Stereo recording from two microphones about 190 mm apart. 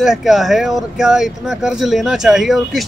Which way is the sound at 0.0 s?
Centre (ahead or behind).